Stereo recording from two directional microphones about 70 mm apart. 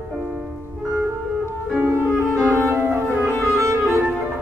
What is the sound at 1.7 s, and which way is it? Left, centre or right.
Music, right.